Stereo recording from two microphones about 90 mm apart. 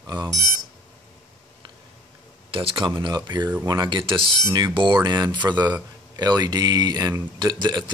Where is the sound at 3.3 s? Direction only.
55° right (ahead or behind).